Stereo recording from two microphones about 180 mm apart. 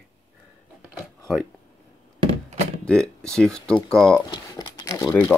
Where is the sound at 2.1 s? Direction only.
30° right (ahead or behind).